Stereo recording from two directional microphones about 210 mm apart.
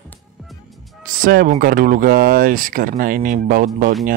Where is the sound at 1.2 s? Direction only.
45° right (ahead or behind).